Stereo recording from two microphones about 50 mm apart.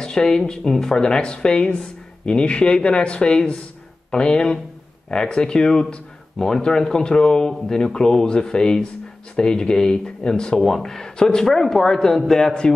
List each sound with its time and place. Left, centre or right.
0.0 s speech: centre